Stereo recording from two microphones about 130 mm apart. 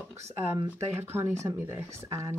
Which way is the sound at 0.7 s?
20° right (ahead or behind).